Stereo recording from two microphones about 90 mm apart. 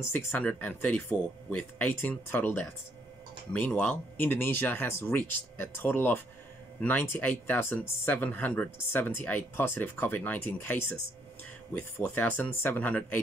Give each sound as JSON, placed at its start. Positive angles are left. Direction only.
{"t": 0.1, "sound": "speech", "side_deg": 15}